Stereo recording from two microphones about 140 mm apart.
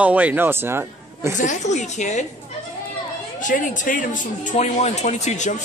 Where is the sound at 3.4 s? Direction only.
70° left (ahead or behind).